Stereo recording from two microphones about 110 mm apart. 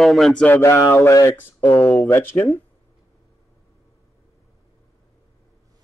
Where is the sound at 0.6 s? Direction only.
25° left (ahead or behind).